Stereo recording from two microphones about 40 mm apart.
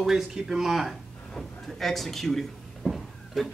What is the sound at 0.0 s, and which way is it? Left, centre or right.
Speech, centre.